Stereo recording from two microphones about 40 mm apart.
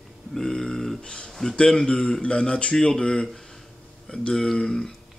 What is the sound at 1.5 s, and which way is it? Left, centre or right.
Speech, centre.